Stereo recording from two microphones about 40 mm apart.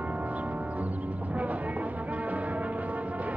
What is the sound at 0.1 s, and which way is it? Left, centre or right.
Music, right.